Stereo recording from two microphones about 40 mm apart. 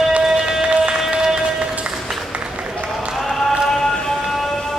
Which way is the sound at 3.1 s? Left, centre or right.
Centre.